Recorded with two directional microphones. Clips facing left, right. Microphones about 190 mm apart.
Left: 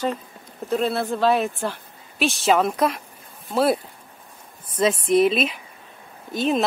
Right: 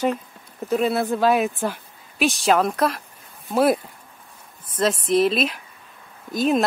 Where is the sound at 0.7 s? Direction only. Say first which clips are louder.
Right 2 dB; 5° right (ahead or behind).